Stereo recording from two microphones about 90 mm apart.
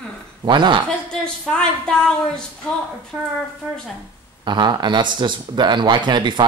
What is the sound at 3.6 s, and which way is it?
Speech, 10° right (ahead or behind).